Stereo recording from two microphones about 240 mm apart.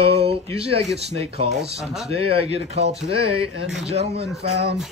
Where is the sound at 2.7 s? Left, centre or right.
Right.